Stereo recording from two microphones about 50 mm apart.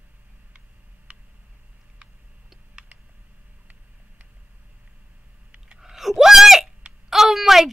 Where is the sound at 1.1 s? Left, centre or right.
Right.